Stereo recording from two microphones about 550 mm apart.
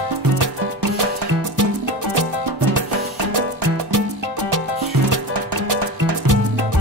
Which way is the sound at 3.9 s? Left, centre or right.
Right.